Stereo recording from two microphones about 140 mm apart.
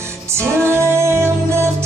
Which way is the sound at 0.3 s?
20° right (ahead or behind).